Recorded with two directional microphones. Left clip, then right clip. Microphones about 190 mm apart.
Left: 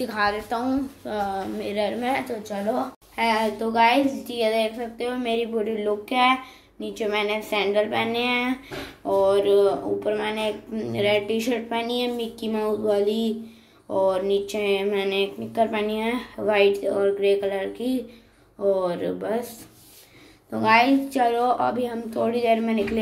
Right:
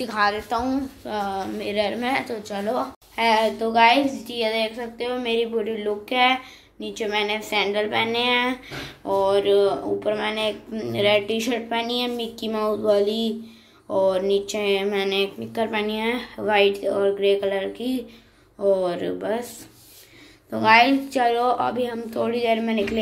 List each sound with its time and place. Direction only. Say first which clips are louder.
0.0 s a woman's voice: right 2 dB; centre (ahead or behind)
20.4 s a woman's voice: right 3 dB; centre (ahead or behind)